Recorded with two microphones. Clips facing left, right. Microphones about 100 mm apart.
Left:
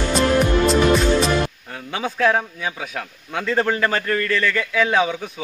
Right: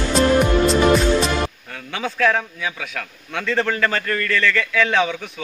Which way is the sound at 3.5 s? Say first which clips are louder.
Left 1 dB; 20° left (ahead or behind).